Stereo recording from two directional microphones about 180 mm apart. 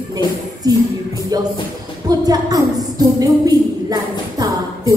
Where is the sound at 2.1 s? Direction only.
20° right (ahead or behind).